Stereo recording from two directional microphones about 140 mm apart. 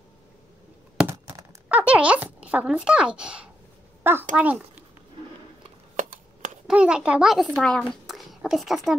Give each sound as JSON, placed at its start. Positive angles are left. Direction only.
{"t": 1.7, "sound": "a child's voice", "side_deg": -10}
{"t": 5.9, "sound": "a sound", "side_deg": -65}
{"t": 6.7, "sound": "a child's voice", "side_deg": -5}